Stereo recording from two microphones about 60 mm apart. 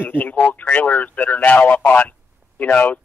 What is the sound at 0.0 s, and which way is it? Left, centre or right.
Speech, left.